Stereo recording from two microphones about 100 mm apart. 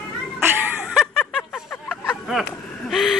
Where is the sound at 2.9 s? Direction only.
Centre (ahead or behind).